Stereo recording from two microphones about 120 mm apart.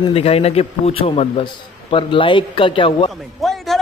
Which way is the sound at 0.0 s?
55° left (ahead or behind).